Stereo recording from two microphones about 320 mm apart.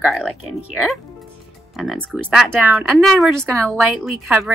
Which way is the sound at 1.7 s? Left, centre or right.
Centre.